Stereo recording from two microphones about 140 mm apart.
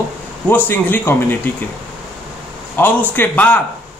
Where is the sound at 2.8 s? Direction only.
10° left (ahead or behind).